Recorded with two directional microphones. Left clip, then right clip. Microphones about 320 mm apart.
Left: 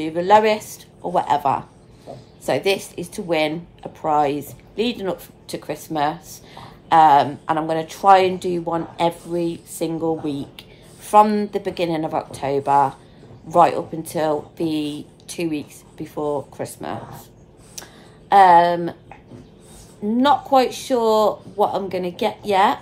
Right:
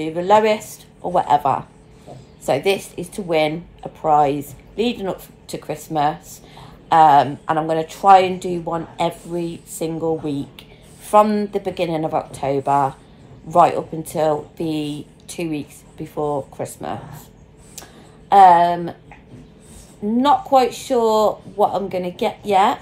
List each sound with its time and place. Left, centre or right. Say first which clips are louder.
0.0 s speech: even; centre
18.3 s speech: right 1 dB; centre
20.1 s speech: right 1 dB; centre